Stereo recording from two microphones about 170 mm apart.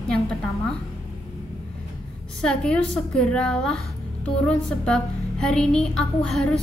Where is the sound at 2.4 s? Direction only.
5° left (ahead or behind).